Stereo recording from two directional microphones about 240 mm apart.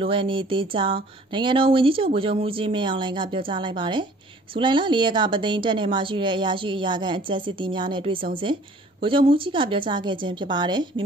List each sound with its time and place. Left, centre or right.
0.0 s a woman's voice: right